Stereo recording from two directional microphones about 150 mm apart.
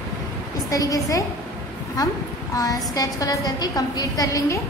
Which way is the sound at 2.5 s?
25° left (ahead or behind).